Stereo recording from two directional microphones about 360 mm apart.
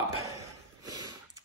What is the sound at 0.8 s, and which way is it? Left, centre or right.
Snort, centre.